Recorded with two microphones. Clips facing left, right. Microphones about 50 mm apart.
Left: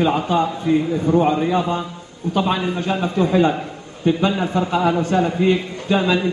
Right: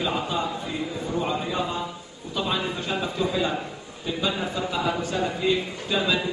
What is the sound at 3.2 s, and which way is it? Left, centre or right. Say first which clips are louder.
A man's voice: left 10 dB; left.